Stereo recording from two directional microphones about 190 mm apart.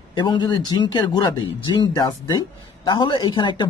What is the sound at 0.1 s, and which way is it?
Speech, 25° left (ahead or behind).